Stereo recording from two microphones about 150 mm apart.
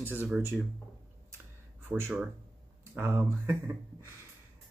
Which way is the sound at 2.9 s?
15° right (ahead or behind).